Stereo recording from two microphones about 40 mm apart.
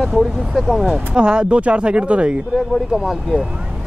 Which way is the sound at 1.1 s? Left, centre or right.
Right.